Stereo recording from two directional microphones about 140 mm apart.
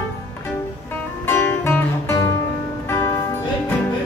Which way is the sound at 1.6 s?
15° left (ahead or behind).